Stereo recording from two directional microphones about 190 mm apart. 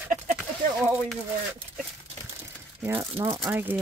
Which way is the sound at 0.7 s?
10° right (ahead or behind).